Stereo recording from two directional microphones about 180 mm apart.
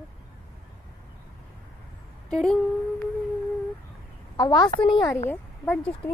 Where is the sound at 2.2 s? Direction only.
5° left (ahead or behind).